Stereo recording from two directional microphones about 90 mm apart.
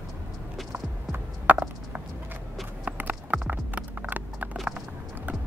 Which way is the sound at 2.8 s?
15° right (ahead or behind).